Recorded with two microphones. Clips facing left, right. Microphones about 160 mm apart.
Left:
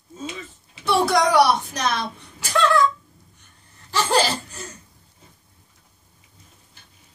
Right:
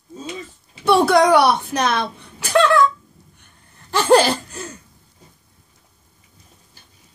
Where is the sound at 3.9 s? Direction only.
55° right (ahead or behind).